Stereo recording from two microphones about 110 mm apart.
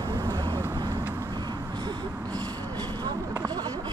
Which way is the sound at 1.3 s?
40° right (ahead or behind).